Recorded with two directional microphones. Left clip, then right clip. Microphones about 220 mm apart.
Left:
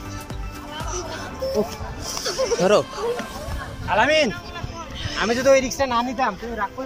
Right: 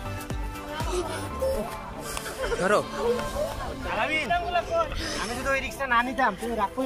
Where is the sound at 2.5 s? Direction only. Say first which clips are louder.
Left 5 dB; 10° left (ahead or behind).